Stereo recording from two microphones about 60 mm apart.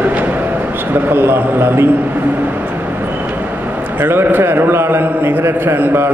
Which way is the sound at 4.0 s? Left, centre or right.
Right.